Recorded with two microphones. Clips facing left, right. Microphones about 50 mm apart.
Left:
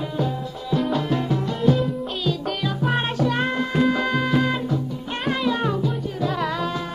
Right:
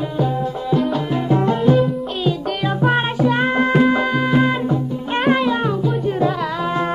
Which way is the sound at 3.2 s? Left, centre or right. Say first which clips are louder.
Right 5 dB; centre.